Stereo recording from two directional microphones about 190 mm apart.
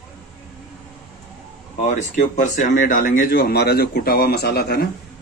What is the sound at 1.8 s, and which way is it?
Speech, 35° left (ahead or behind).